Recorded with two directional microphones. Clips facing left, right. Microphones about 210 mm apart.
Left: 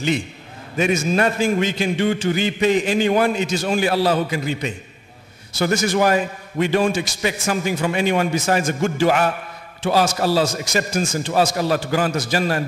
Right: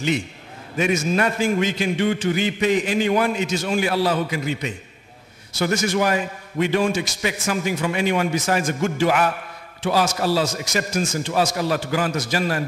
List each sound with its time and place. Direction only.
0.7 s a man's voice: 30° left (ahead or behind)